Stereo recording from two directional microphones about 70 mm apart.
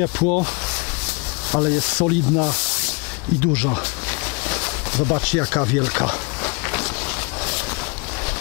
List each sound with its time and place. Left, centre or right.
0.0 s speech: centre
1.5 s speech: centre
4.5 s a sound: centre